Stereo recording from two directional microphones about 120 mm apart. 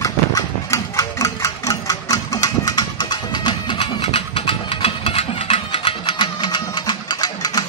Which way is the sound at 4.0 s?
55° left (ahead or behind).